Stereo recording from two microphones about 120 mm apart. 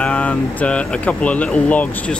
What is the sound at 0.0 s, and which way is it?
Speech, 10° left (ahead or behind).